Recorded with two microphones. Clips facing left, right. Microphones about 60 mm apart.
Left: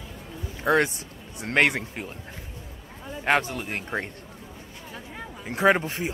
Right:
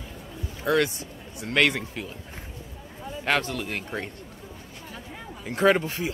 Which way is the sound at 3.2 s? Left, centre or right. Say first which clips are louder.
Left 2 dB; left.